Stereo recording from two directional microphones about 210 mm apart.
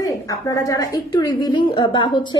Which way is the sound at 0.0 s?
15° left (ahead or behind).